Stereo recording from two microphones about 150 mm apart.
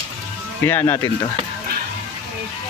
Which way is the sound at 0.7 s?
15° left (ahead or behind).